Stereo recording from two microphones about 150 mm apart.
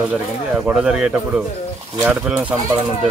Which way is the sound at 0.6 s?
5° right (ahead or behind).